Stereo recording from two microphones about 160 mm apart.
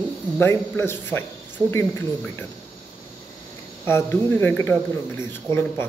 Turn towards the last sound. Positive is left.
turn(degrees=15)  # may be behind; listen again after turning